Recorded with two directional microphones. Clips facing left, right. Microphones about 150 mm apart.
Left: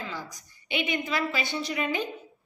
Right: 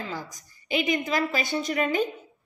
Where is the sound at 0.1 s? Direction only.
40° right (ahead or behind).